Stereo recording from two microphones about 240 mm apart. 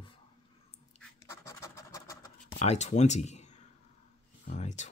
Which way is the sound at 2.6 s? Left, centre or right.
Left.